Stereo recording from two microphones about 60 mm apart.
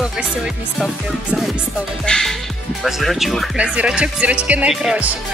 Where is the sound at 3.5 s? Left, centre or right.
Centre.